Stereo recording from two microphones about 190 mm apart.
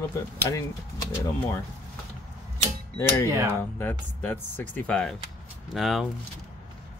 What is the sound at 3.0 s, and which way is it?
Speech, 15° left (ahead or behind).